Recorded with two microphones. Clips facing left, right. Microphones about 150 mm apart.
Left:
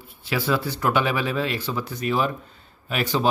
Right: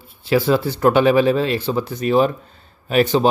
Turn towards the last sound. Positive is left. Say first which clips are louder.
# right 9 dB
turn(degrees=-25)  # may be behind; listen again after turning